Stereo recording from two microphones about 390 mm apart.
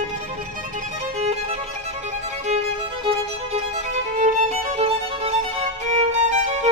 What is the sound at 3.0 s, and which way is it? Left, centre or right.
Music, centre.